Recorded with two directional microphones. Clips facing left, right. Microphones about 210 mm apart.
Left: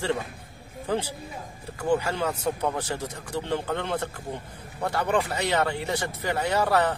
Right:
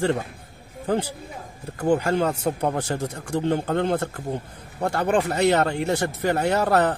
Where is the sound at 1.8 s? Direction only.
55° right (ahead or behind).